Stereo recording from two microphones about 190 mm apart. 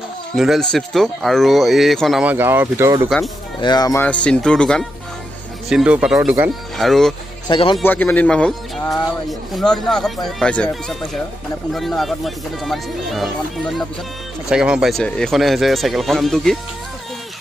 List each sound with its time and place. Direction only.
0.4 s speech: centre (ahead or behind)
3.6 s speech: 20° left (ahead or behind)
4.0 s speech: 5° left (ahead or behind); by 6.5 s 10° right (ahead or behind)
6.8 s speech: centre (ahead or behind)
7.4 s speech: 30° left (ahead or behind)
7.8 s speech: 10° left (ahead or behind)